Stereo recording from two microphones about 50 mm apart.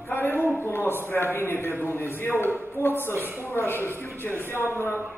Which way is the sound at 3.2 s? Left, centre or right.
Right.